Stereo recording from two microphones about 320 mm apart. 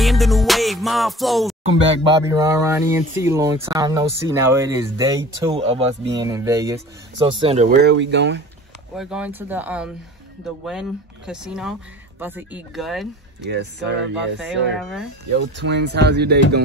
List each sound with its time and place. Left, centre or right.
0.0 s music: centre
2.2 s speech: centre; by 8.4 s right
8.9 s speech: centre
13.5 s speech: right
14.8 s speech: centre
15.4 s speech: right